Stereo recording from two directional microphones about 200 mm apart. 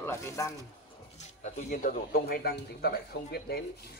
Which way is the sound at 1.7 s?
45° left (ahead or behind).